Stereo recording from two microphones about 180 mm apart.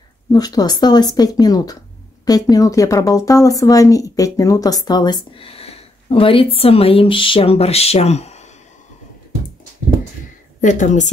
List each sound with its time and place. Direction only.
0.3 s speech: 20° left (ahead or behind); by 8.4 s 35° left (ahead or behind)
10.6 s a woman's voice: 45° left (ahead or behind)